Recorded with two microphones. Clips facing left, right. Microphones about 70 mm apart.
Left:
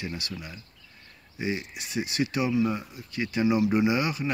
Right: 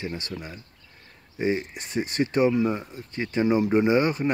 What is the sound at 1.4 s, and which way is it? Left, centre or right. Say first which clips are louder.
Speech: right 5 dB; right.